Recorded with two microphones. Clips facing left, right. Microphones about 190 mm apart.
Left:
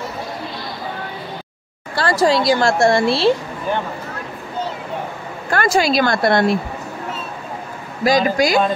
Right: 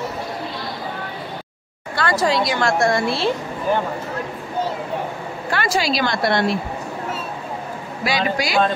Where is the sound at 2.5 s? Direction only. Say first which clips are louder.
Left 4 dB; 35° left (ahead or behind).